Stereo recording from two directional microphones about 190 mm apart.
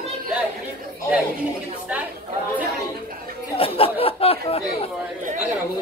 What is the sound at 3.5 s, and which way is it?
Chatter, 30° left (ahead or behind).